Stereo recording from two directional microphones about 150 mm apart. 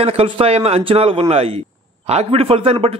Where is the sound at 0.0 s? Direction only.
40° right (ahead or behind).